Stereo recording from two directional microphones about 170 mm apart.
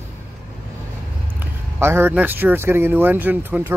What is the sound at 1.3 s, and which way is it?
Speech, 15° right (ahead or behind).